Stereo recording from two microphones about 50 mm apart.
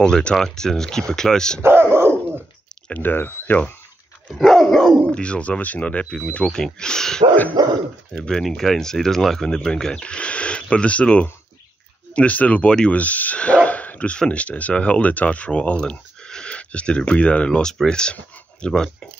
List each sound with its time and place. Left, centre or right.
0.0 s speech: centre
1.6 s dog: right
2.9 s speech: left
4.5 s dog: centre
5.0 s speech: left
6.5 s speech: centre
18.7 s dog: centre